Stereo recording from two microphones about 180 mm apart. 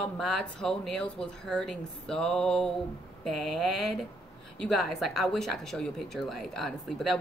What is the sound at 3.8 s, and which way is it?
A woman's voice, centre (ahead or behind).